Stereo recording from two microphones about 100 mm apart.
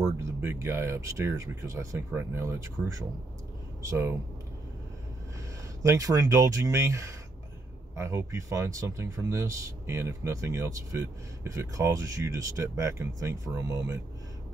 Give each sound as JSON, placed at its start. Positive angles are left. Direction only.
{"t": 0.2, "sound": "speech", "side_deg": -30}
{"t": 5.8, "sound": "speech", "side_deg": -35}